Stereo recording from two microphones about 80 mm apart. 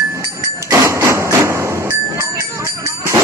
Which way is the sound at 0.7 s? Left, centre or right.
Right.